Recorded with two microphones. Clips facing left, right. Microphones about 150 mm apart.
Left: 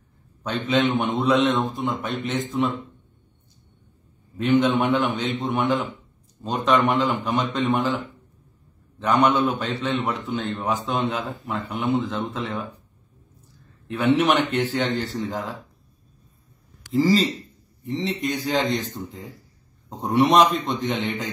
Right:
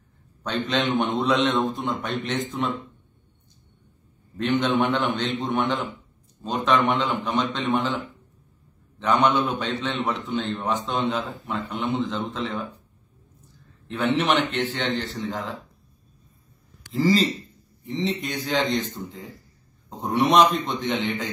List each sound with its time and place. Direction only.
0.4 s a man's voice: 5° left (ahead or behind)
4.4 s a man's voice: 10° left (ahead or behind)
9.0 s a man's voice: 5° left (ahead or behind)
13.8 s a man's voice: 10° left (ahead or behind)
14.8 s a man's voice: 45° left (ahead or behind)
15.1 s a man's voice: centre (ahead or behind)
16.8 s a man's voice: centre (ahead or behind)